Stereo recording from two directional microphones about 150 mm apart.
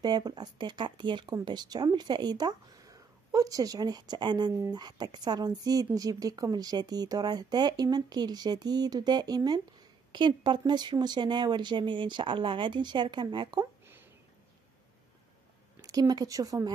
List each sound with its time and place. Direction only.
0.0 s speech: 30° right (ahead or behind)
15.8 s speech: 25° right (ahead or behind)